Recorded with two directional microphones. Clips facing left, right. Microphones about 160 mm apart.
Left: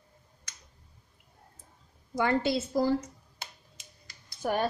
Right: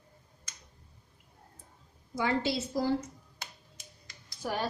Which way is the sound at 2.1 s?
55° left (ahead or behind).